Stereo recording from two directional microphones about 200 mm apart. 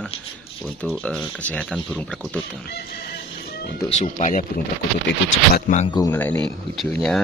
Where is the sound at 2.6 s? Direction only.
50° left (ahead or behind).